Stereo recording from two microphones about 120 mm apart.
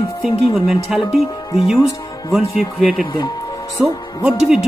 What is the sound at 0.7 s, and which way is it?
Speech, centre (ahead or behind).